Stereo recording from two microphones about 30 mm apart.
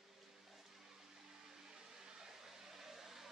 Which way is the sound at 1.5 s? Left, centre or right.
Right.